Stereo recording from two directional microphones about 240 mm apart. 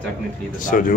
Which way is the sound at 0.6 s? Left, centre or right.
Left.